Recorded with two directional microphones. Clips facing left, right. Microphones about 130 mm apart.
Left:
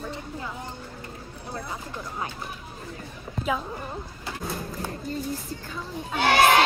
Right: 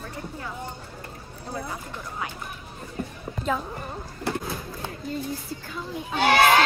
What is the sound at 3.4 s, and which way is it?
Speech, 5° left (ahead or behind).